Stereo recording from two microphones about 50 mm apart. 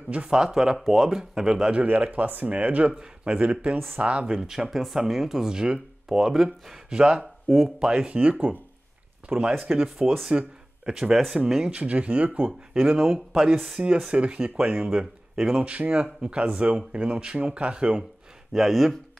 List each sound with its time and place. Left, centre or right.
0.7 s speech: centre
1.9 s speech: right
2.9 s speech: centre
3.3 s speech: right
4.4 s speech: centre
6.9 s speech: centre
7.4 s speech: centre
7.8 s speech: centre
8.1 s speech: right
11.7 s speech: right
13.0 s speech: centre
13.7 s speech: right
15.6 s speech: right
18.5 s speech: centre